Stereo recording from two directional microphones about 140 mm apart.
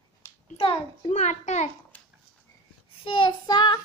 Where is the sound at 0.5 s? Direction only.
40° left (ahead or behind).